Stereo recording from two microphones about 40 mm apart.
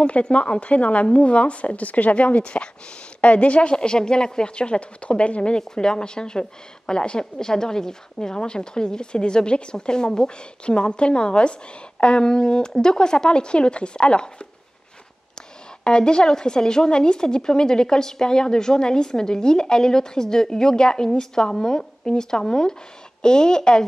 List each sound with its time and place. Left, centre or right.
0.0 s a woman's voice: left
15.8 s a woman's voice: left